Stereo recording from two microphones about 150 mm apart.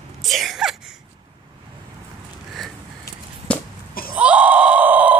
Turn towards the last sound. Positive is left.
turn(degrees=-10)  # may be behind; listen again after turning